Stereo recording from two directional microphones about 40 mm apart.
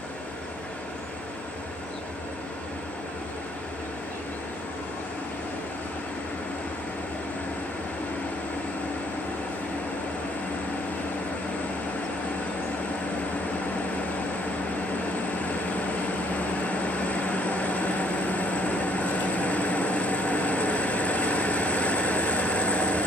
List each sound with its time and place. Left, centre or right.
16.3 s vehicle: left